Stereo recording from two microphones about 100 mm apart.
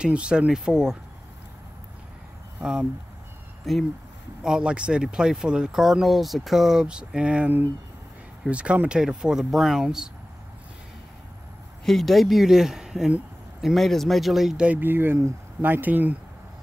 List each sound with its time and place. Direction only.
0.0 s speech: 10° right (ahead or behind)
2.6 s speech: 5° right (ahead or behind)
11.8 s speech: centre (ahead or behind); by 16.2 s 15° right (ahead or behind)